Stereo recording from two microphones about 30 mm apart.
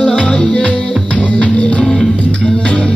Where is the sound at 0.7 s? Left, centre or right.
Left.